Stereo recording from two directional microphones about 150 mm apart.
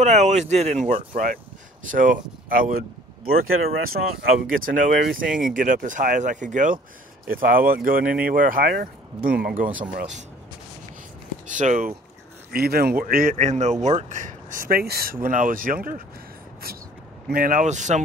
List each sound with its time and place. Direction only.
0.0 s speech: 50° right (ahead or behind); by 2.8 s 65° right (ahead or behind)
3.9 s speech: 70° right (ahead or behind)
7.2 s speech: 70° right (ahead or behind)
9.6 s speech: 65° right (ahead or behind)
11.4 s speech: 55° right (ahead or behind)
12.5 s speech: 90° right
15.2 s speech: 65° right (ahead or behind)
17.3 s speech: 65° right (ahead or behind)